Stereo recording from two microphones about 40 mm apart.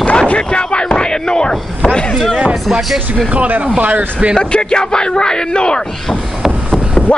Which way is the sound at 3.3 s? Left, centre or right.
Right.